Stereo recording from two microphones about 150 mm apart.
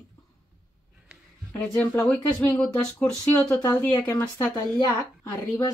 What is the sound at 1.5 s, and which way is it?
Speech, 15° left (ahead or behind).